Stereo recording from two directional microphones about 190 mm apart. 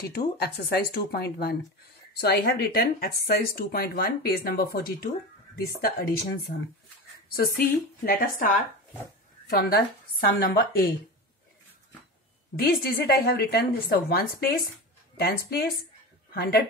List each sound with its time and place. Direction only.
0.0 s a woman's voice: 55° left (ahead or behind)
9.5 s speech: 55° left (ahead or behind)
12.5 s a woman's voice: 55° left (ahead or behind)